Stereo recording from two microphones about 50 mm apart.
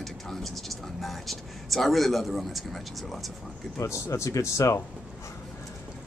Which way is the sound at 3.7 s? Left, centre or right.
Left.